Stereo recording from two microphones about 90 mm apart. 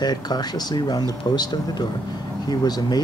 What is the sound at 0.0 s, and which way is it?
Speech, 50° left (ahead or behind).